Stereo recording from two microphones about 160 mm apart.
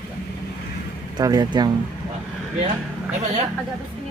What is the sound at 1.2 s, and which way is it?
Speech, 25° right (ahead or behind).